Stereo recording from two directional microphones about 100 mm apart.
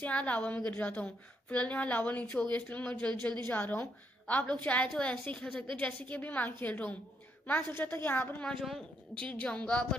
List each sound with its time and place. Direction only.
0.0 s a woman's voice: 15° left (ahead or behind)
5.4 s a woman's voice: 10° left (ahead or behind)
8.5 s a woman's voice: centre (ahead or behind)